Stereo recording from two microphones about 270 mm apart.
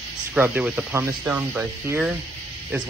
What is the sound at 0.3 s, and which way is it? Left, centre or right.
Speech, centre.